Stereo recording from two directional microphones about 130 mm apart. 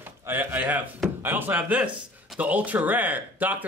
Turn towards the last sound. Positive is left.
turn(degrees=-15)  # may be behind; listen again after turning